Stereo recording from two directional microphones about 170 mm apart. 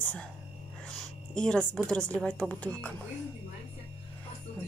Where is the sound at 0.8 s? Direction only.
5° left (ahead or behind).